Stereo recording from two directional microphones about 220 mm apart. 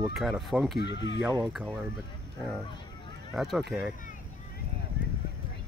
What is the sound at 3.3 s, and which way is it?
Speech, centre (ahead or behind).